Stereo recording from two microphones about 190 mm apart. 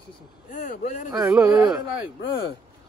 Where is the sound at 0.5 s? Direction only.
40° left (ahead or behind).